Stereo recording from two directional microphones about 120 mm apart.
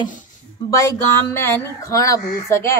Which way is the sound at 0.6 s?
25° left (ahead or behind).